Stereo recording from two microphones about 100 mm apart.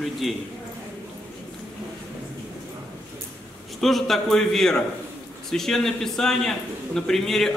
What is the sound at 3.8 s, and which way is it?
A man's voice, centre (ahead or behind).